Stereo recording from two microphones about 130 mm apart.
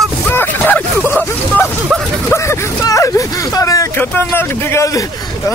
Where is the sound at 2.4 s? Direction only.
25° left (ahead or behind).